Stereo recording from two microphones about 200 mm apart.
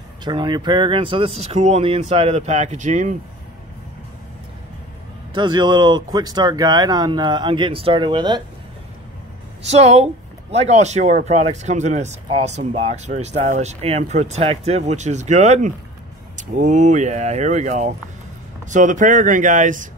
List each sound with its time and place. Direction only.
0.2 s speech: 25° right (ahead or behind)
5.3 s speech: 20° right (ahead or behind)
9.7 s speech: 30° right (ahead or behind)